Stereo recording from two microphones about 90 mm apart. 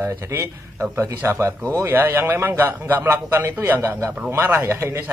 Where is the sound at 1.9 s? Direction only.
25° right (ahead or behind).